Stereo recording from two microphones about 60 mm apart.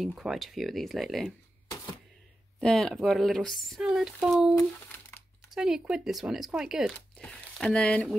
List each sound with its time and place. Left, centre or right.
0.1 s speech: centre
2.6 s speech: centre
3.8 s speech: centre
7.6 s speech: centre